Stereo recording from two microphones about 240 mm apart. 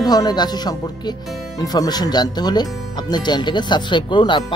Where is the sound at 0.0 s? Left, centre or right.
Centre.